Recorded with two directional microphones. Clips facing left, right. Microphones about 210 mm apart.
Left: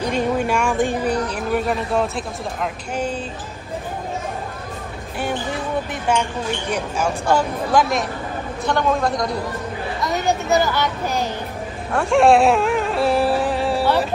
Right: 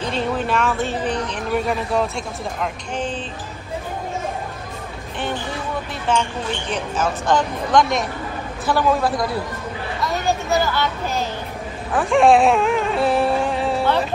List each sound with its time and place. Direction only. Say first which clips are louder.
0.0 s speech: left 3 dB; 15° left (ahead or behind)
6.1 s a man's voice: even; 10° left (ahead or behind); by 9.3 s 5° right (ahead or behind)
10.0 s speech: left 1 dB; 20° left (ahead or behind)
11.9 s speech: even; centre (ahead or behind)